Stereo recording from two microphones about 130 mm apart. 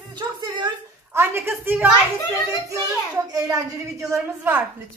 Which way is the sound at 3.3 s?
30° right (ahead or behind).